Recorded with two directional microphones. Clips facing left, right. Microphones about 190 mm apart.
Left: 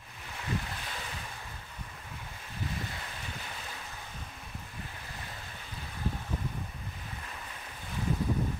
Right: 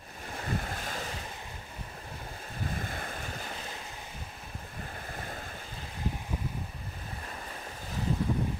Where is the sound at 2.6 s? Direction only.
50° right (ahead or behind).